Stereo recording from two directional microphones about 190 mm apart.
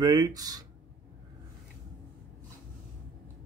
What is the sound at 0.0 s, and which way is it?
Speech, 20° right (ahead or behind).